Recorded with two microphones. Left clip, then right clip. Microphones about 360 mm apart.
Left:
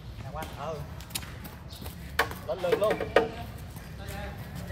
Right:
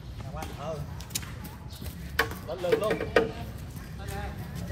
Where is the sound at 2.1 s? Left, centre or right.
Left.